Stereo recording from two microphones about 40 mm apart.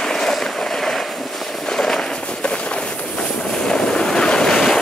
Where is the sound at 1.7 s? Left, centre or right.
Centre.